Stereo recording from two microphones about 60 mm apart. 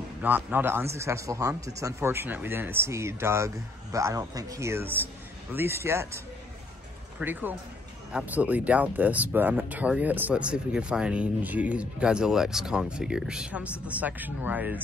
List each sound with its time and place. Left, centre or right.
0.2 s speech: right
2.0 s speech: right
4.3 s speech: right
4.6 s speech: right
7.2 s speech: right
10.3 s speech: centre